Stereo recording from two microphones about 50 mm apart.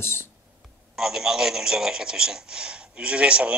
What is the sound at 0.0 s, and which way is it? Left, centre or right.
Speech, left.